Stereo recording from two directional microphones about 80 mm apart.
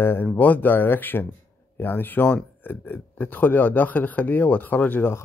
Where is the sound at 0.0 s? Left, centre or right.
Left.